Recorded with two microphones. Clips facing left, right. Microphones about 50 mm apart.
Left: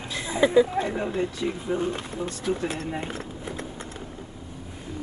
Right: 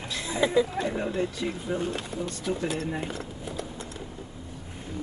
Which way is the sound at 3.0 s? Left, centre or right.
Left.